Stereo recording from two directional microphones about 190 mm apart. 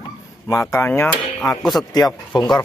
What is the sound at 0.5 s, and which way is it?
Speech, 15° left (ahead or behind).